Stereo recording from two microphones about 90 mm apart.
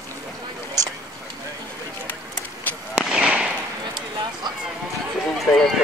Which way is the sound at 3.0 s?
10° right (ahead or behind).